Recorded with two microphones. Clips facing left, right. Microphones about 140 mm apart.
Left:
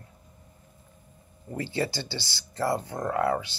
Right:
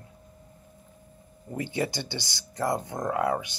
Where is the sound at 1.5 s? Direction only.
15° right (ahead or behind).